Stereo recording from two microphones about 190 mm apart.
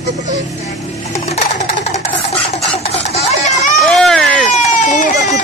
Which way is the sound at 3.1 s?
40° left (ahead or behind).